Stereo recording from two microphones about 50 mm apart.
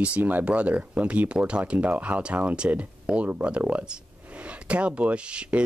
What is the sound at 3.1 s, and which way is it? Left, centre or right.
Speech, centre.